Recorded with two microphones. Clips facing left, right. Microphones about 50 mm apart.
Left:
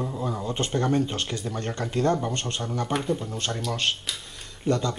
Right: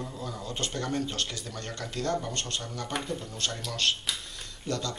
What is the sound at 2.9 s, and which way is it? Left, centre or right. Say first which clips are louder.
Speech: left 6 dB; centre.